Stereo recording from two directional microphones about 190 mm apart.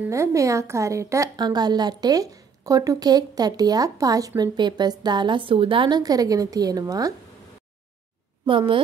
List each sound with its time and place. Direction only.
0.1 s a woman's voice: 15° right (ahead or behind)
8.5 s a woman's voice: 25° right (ahead or behind)